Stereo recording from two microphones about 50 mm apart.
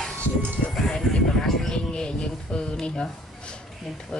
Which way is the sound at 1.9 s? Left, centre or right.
Centre.